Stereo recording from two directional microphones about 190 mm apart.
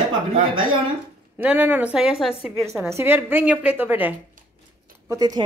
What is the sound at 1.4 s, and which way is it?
A woman's voice, 10° right (ahead or behind).